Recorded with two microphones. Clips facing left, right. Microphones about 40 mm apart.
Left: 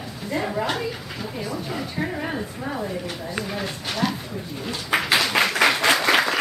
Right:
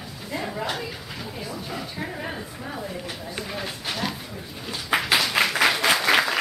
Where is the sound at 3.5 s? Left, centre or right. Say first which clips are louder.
Left 2 dB; centre.